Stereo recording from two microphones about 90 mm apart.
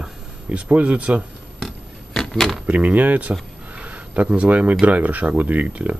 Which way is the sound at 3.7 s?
15° right (ahead or behind).